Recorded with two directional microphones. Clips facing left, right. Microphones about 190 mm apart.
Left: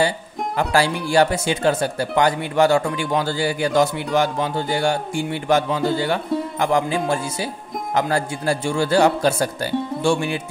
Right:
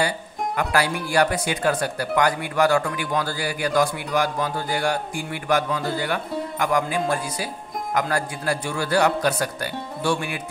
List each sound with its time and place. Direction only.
0.6 s speech: 30° left (ahead or behind)